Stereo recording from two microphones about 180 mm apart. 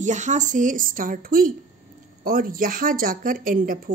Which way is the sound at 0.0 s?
40° right (ahead or behind).